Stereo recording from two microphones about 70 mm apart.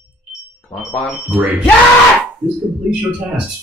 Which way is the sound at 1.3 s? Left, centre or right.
Right.